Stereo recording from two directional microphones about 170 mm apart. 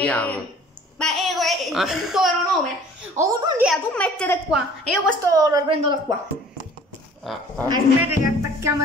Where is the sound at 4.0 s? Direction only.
10° left (ahead or behind).